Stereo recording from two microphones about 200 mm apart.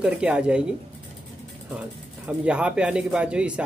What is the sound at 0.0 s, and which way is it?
Speech, 5° right (ahead or behind).